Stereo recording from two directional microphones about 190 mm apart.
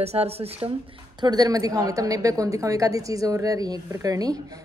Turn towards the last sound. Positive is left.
turn(degrees=-20)  # may be behind; listen again after turning